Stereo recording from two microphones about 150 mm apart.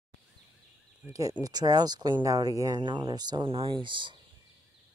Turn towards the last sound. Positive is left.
turn(degrees=-35)  # may be behind; listen again after turning